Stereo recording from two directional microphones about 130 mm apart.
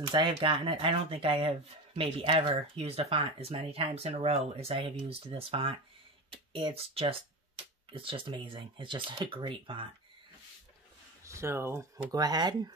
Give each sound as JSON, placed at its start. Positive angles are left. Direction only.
{"t": 0.1, "sound": "speech", "side_deg": -40}
{"t": 11.2, "sound": "speech", "side_deg": -20}